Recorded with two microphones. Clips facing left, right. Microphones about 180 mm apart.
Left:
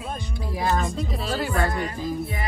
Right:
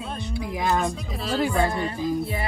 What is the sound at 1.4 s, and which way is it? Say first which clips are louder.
Speech: right 3 dB; 15° right (ahead or behind).